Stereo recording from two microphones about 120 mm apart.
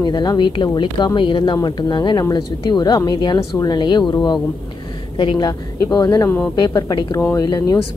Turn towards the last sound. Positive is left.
turn(degrees=35)  # may be behind; listen again after turning